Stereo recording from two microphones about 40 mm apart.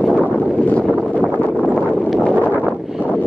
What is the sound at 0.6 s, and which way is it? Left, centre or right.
Wind noise, left.